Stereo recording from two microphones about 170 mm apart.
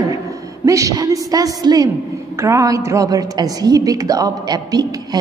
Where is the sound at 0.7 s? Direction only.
20° right (ahead or behind).